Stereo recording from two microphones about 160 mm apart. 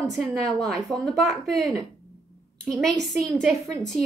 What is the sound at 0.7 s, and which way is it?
Speech, 25° right (ahead or behind).